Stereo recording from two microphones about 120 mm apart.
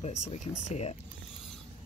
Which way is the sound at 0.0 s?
65° left (ahead or behind).